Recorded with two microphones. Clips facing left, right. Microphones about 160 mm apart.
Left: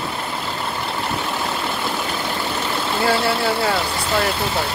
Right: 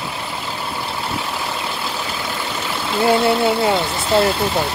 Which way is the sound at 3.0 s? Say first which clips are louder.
Right 5 dB; 20° right (ahead or behind).